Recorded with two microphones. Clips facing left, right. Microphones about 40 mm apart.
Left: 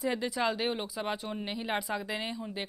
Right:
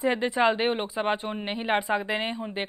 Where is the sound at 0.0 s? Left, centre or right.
Right.